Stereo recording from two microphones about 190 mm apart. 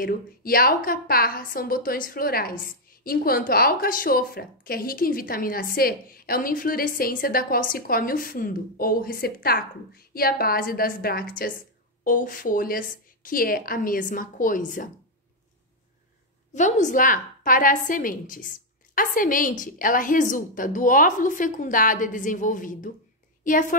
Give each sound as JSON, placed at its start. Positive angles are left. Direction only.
{"t": 0.0, "sound": "a woman's voice", "side_deg": 50}
{"t": 16.5, "sound": "a woman's voice", "side_deg": 40}